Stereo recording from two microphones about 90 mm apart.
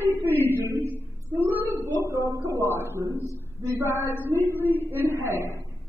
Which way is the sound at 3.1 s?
25° left (ahead or behind).